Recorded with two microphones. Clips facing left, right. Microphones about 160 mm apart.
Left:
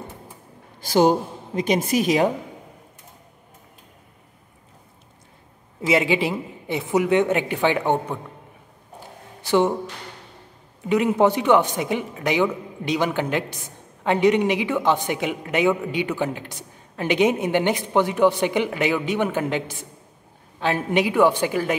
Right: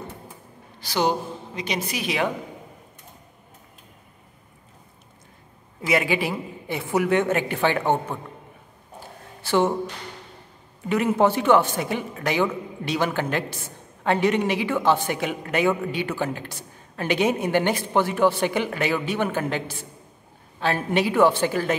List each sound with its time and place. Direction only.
0.7 s a woman's voice: 50° left (ahead or behind)
5.8 s a woman's voice: 25° left (ahead or behind)
9.4 s speech: 15° left (ahead or behind)
10.9 s a woman's voice: 15° left (ahead or behind)